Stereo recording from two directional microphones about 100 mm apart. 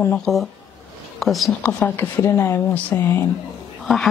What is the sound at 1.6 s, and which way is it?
Speech, 20° left (ahead or behind).